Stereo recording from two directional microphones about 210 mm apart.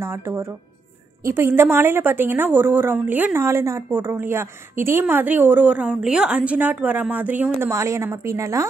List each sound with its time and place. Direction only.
0.0 s a woman's voice: 10° right (ahead or behind)